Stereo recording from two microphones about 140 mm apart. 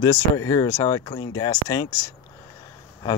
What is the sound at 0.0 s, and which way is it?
Speech, 25° left (ahead or behind).